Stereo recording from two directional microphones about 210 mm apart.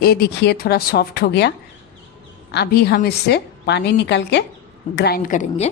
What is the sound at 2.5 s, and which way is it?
A woman's voice, 50° left (ahead or behind).